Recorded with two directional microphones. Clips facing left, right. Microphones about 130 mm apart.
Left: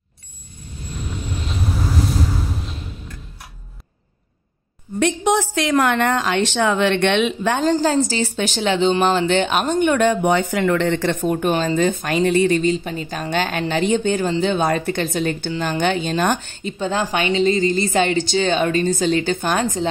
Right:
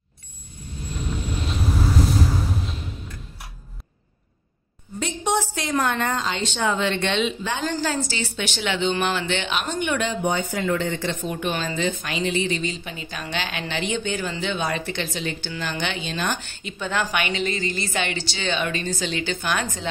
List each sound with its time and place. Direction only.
4.9 s a woman's voice: 85° left; by 7.6 s 60° left (ahead or behind)
7.6 s a woman's voice: 35° left (ahead or behind)
10.2 s a woman's voice: 75° left (ahead or behind)
11.3 s a woman's voice: 40° left (ahead or behind)